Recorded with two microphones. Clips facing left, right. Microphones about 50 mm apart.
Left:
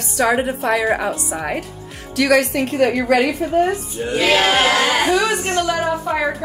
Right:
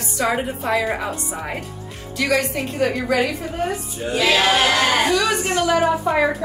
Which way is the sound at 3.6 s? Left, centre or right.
Left.